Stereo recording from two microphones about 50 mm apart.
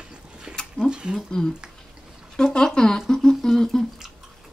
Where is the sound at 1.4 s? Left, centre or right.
Centre.